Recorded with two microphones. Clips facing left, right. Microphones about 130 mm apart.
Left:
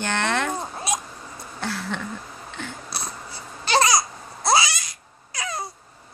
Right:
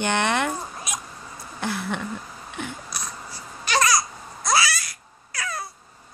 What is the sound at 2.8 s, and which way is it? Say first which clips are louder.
Wheeze: left 2 dB; 30° left (ahead or behind).